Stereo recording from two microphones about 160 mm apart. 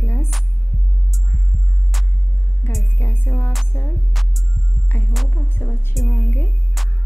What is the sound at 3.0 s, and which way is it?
Music, 15° left (ahead or behind).